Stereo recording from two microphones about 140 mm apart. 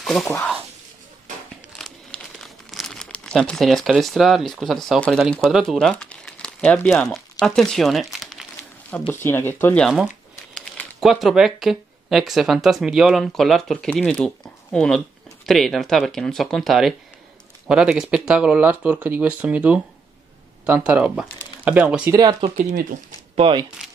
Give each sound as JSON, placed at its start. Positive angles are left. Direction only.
{"t": 0.0, "sound": "speech", "side_deg": 0}
{"t": 1.7, "sound": "crumpling", "side_deg": 0}
{"t": 2.7, "sound": "speech", "side_deg": 0}
{"t": 8.9, "sound": "speech", "side_deg": 15}
{"t": 10.5, "sound": "speech", "side_deg": 0}
{"t": 22.1, "sound": "speech", "side_deg": -25}
{"t": 22.6, "sound": "speech", "side_deg": -85}
{"t": 23.3, "sound": "speech", "side_deg": -40}